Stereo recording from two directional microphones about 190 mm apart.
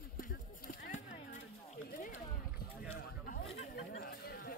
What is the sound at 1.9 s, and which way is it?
Rowboat, 45° left (ahead or behind).